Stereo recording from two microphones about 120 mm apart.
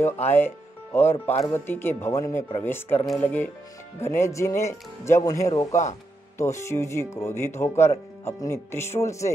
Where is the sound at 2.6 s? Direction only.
15° left (ahead or behind).